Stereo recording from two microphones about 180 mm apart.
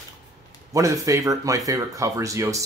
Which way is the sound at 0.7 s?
20° right (ahead or behind).